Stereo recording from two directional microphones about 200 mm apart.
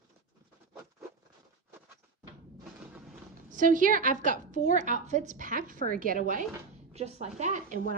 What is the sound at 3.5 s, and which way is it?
A woman's voice, 40° right (ahead or behind).